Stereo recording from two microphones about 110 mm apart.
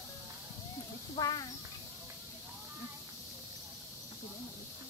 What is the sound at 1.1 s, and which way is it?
Speech, 40° left (ahead or behind).